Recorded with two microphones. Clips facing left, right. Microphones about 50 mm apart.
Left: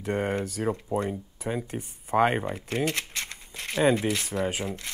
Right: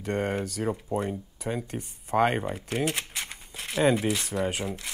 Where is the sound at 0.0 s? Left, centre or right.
Centre.